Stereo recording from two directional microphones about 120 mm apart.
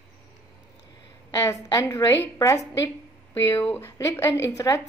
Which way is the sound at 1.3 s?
25° left (ahead or behind).